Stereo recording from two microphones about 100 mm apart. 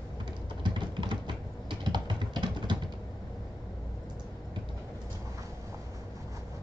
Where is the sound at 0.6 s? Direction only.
50° right (ahead or behind).